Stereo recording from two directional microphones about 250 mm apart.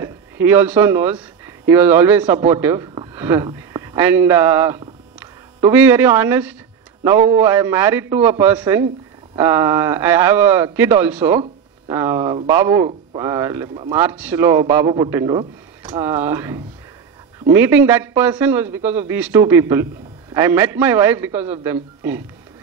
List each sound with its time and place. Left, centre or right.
0.0 s speech: centre
2.2 s a man's voice: right
2.5 s speech: centre
7.2 s a man's voice: right
7.4 s a man's voice: centre
13.2 s a man's voice: centre
13.7 s a man's voice: right
14.0 s a man's voice: centre